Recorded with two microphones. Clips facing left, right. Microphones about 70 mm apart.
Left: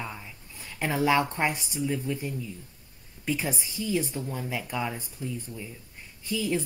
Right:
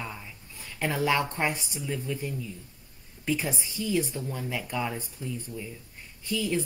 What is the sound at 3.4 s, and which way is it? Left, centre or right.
Speech, centre.